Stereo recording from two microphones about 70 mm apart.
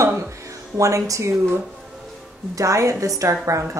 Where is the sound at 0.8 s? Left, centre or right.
Right.